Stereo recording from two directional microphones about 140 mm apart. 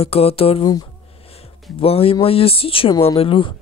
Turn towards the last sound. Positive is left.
turn(degrees=40)  # may be behind; listen again after turning